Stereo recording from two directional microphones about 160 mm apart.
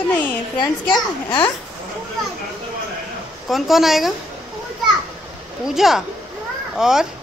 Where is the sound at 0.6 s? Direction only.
30° left (ahead or behind).